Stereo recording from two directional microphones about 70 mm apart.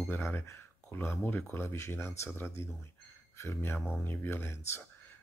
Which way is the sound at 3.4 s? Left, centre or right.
Left.